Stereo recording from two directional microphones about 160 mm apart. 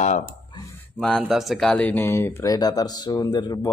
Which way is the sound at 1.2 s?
Centre (ahead or behind).